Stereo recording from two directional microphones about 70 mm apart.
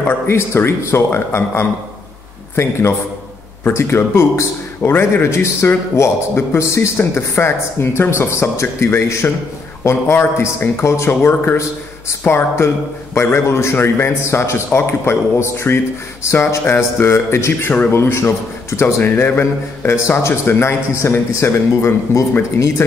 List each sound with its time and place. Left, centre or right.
0.3 s speech: left